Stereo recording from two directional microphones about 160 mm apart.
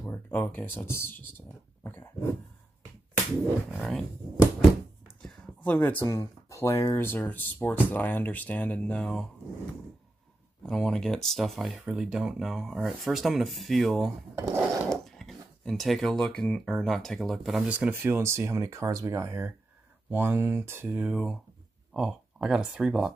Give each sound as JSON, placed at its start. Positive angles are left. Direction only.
{"t": 0.1, "sound": "speech", "side_deg": 10}
{"t": 1.8, "sound": "dog", "side_deg": 15}
{"t": 3.7, "sound": "speech", "side_deg": 0}
{"t": 5.2, "sound": "speech", "side_deg": 10}
{"t": 10.6, "sound": "speech", "side_deg": 5}
{"t": 14.3, "sound": "a sound", "side_deg": -15}
{"t": 14.9, "sound": "speech", "side_deg": 0}